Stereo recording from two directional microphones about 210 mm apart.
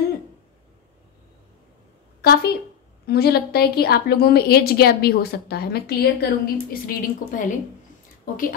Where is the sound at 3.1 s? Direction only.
50° left (ahead or behind).